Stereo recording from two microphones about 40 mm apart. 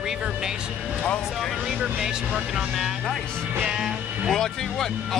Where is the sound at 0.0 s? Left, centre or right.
Centre.